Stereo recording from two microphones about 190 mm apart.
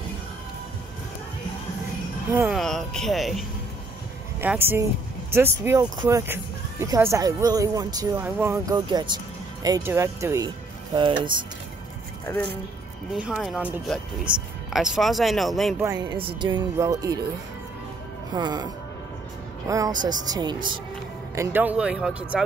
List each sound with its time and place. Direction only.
2.5 s speech: centre (ahead or behind)
4.4 s speech: 10° right (ahead or behind)
8.7 s speech: 25° right (ahead or behind)
12.3 s speech: 10° left (ahead or behind)
13.1 s speech: 5° right (ahead or behind)
15.8 s speech: 20° right (ahead or behind)
18.3 s speech: 20° right (ahead or behind)
19.7 s speech: 20° right (ahead or behind)
21.4 s speech: 10° right (ahead or behind)